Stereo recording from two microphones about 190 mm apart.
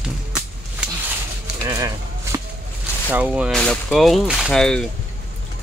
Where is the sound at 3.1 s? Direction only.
5° right (ahead or behind).